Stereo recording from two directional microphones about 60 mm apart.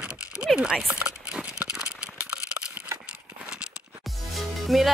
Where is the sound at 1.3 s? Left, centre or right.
Centre.